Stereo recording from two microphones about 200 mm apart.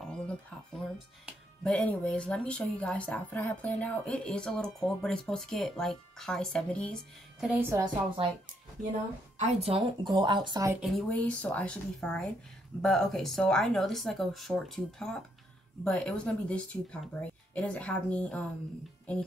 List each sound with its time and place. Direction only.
0.0 s speech: 5° left (ahead or behind)
9.4 s speech: 30° right (ahead or behind)
10.8 s a woman's voice: centre (ahead or behind)